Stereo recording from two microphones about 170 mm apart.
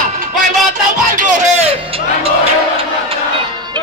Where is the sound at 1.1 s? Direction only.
45° right (ahead or behind).